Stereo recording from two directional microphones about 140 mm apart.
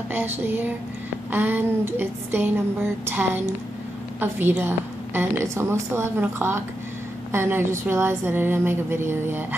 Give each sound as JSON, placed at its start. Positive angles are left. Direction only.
{"t": 0.1, "sound": "a woman's voice", "side_deg": -15}